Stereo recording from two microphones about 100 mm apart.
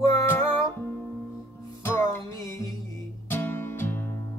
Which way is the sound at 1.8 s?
25° left (ahead or behind).